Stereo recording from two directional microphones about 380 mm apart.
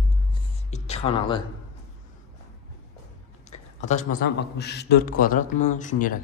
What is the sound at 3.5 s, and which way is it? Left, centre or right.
A man's voice, centre.